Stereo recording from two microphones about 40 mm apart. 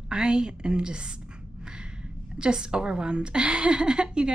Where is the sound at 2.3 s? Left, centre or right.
Right.